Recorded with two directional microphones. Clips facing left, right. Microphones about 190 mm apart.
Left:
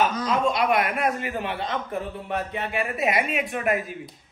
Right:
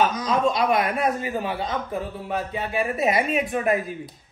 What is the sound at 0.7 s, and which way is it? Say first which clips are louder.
Speech: right 1 dB; 25° right (ahead or behind).